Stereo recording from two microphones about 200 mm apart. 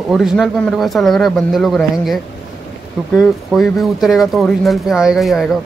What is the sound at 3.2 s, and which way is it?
A man's voice, centre (ahead or behind).